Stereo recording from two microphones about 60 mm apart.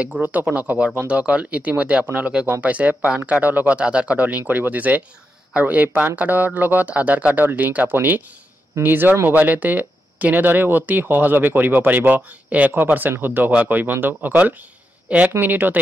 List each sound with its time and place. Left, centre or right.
0.0 s speech: right